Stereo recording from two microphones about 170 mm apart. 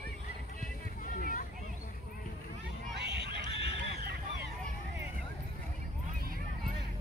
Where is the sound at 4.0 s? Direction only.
70° right (ahead or behind).